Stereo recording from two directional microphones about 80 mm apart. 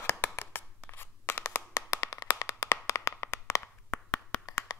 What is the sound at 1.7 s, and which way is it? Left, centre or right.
Clapping, left.